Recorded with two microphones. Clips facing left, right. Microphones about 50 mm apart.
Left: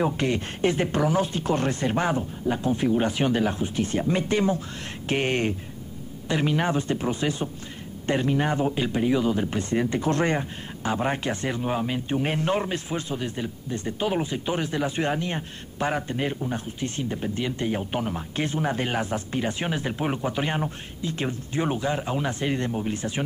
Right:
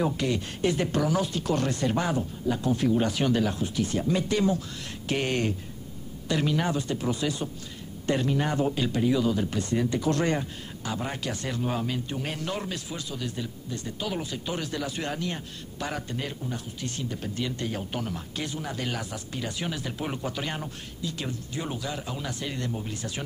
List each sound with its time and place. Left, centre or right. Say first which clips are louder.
0.0 s speech: left 3 dB; left